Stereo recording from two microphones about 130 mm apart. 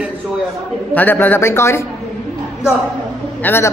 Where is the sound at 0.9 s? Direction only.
15° left (ahead or behind).